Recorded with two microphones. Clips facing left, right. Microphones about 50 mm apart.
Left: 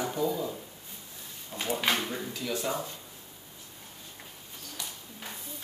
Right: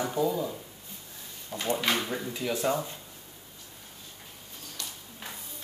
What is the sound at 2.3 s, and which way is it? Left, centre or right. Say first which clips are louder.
Speech: right 6 dB; right.